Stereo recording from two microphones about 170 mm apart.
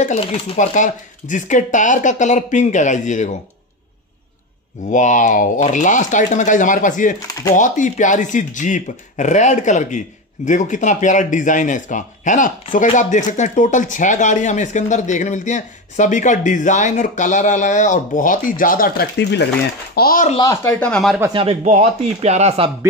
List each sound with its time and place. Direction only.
0.0 s speech: 40° left (ahead or behind)
4.9 s speech: 45° left (ahead or behind)
7.2 s speech: 20° left (ahead or behind)
7.5 s speech: 50° left (ahead or behind); by 19.4 s 75° left (ahead or behind)
20.0 s speech: 55° left (ahead or behind)
20.3 s speech: 20° left (ahead or behind)
20.8 s speech: 5° left (ahead or behind)
21.3 s speech: 30° right (ahead or behind)
21.6 s speech: 40° right (ahead or behind)